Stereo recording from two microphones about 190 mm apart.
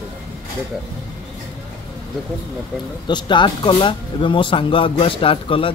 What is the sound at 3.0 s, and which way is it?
Speech, 25° left (ahead or behind).